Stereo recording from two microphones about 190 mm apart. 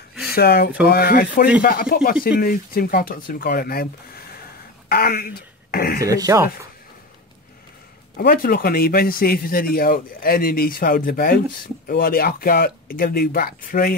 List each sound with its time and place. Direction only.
0.3 s speech: 55° left (ahead or behind)
6.0 s speech: 15° right (ahead or behind)
8.2 s speech: 55° left (ahead or behind)